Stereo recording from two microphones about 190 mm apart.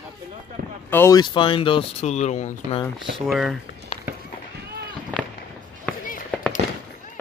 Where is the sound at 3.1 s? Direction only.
Centre (ahead or behind).